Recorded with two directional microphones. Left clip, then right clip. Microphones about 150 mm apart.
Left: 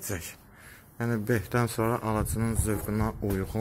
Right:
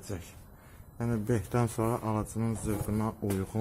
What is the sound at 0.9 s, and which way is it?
Speech, centre (ahead or behind).